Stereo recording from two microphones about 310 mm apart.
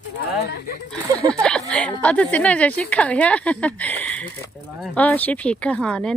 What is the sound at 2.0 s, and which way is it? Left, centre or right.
Speech, centre.